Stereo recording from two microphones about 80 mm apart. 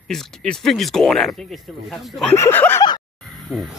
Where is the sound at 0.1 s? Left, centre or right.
Centre.